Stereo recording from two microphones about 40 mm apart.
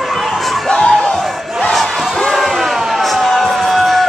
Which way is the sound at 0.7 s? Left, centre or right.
Centre.